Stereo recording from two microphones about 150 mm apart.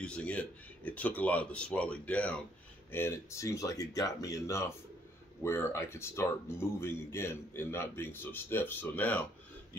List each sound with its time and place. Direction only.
0.0 s speech: 10° left (ahead or behind)